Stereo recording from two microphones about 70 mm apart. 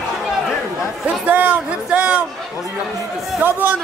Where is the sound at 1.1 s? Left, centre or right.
Right.